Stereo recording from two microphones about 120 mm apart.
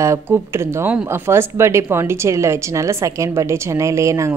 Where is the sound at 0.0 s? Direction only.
25° right (ahead or behind).